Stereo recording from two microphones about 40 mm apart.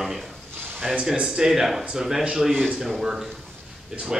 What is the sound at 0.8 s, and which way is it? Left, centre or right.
Speech, centre.